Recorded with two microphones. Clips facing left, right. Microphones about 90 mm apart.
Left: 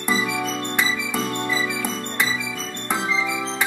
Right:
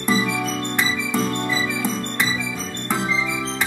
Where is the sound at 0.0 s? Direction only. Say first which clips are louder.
Right 2 dB; 15° left (ahead or behind).